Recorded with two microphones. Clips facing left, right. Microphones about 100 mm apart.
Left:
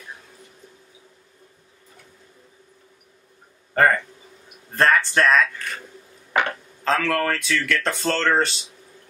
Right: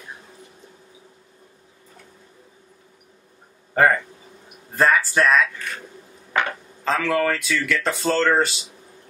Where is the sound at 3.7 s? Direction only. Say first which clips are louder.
Right 1 dB; 5° right (ahead or behind).